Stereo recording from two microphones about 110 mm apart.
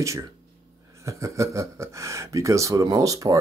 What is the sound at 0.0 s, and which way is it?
Speech, 30° right (ahead or behind).